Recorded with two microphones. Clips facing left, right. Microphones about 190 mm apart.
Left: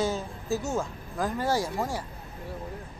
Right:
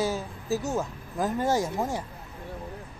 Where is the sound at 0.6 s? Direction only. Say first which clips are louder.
Right 1 dB; 20° right (ahead or behind).